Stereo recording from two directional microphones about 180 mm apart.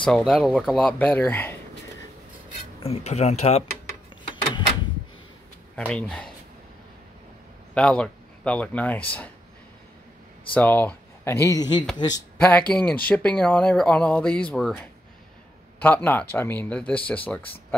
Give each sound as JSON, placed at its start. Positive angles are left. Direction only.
{"t": 0.0, "sound": "speech", "side_deg": 5}
{"t": 2.8, "sound": "speech", "side_deg": 35}
{"t": 5.8, "sound": "speech", "side_deg": 5}
{"t": 7.7, "sound": "speech", "side_deg": 5}
{"t": 10.5, "sound": "speech", "side_deg": 10}